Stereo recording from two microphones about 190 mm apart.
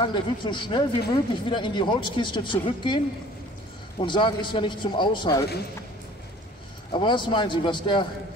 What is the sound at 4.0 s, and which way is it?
A man's voice, 25° left (ahead or behind).